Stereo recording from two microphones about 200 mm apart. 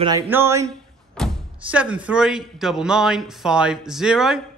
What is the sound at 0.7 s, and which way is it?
Speech, centre (ahead or behind).